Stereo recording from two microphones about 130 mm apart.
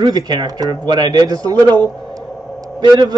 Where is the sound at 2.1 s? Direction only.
30° right (ahead or behind).